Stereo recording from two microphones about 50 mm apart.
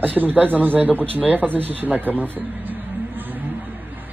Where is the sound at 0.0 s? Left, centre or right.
Right.